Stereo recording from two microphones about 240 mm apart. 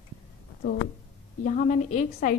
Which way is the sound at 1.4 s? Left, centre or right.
Left.